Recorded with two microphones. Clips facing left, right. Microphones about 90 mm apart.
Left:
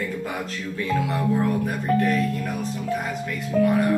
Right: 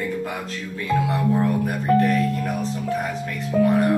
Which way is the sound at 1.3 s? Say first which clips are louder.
Right 1 dB; 30° right (ahead or behind).